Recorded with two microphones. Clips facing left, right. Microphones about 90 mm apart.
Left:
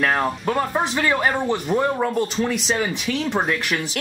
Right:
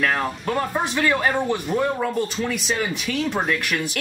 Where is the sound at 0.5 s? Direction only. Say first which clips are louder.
Even; 5° left (ahead or behind).